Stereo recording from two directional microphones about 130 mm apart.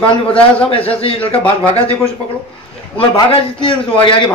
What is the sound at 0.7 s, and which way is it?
Speech, 45° left (ahead or behind).